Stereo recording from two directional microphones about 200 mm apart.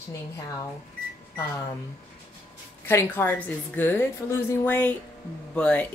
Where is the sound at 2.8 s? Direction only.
10° left (ahead or behind).